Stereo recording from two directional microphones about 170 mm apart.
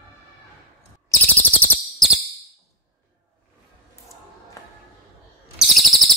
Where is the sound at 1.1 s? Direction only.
10° left (ahead or behind).